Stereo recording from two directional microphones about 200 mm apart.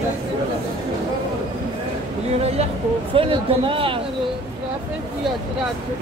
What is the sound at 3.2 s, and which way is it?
Speech, 25° right (ahead or behind).